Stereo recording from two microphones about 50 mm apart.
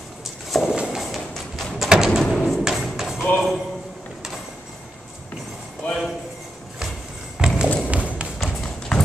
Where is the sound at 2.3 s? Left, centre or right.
Centre.